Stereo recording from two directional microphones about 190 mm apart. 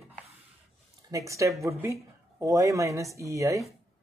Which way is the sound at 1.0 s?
15° right (ahead or behind).